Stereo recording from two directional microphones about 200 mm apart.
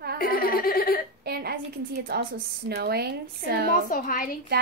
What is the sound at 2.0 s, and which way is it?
A woman's voice, 50° right (ahead or behind).